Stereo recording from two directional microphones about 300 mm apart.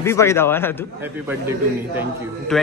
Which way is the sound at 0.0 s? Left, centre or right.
Centre.